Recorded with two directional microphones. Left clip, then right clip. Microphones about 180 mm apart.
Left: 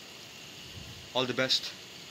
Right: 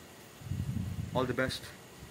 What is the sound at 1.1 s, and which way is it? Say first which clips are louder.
Speech: left 4 dB; 15° left (ahead or behind).